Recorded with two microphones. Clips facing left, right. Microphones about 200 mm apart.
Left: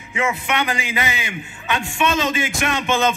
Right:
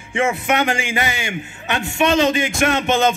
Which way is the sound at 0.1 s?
50° right (ahead or behind).